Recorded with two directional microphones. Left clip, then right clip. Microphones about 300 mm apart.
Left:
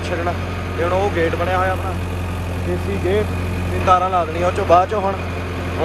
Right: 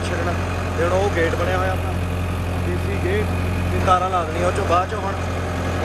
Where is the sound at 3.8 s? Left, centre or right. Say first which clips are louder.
Left 3 dB; centre.